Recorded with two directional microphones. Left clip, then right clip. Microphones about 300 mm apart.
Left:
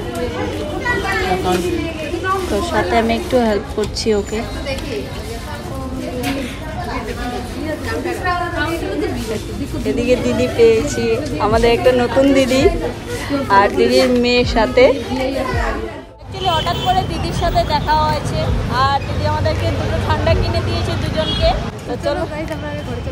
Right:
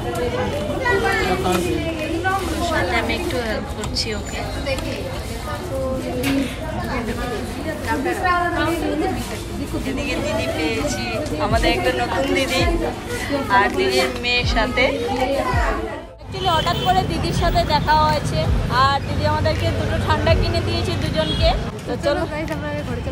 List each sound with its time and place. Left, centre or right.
2.6 s a woman's voice: centre
10.0 s speech: centre
16.4 s speech: centre